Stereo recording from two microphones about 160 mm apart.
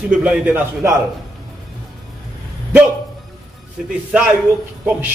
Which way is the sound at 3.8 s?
Centre (ahead or behind).